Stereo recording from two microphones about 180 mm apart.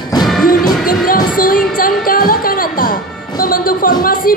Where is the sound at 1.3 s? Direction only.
50° left (ahead or behind).